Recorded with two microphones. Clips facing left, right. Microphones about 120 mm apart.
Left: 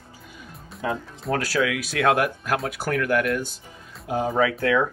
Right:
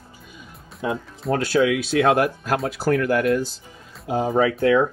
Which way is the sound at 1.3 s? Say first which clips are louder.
Right 5 dB; 25° right (ahead or behind).